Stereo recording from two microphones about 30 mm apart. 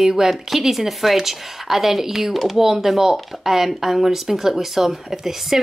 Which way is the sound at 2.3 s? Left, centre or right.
Centre.